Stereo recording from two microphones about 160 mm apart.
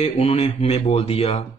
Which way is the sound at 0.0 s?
40° left (ahead or behind).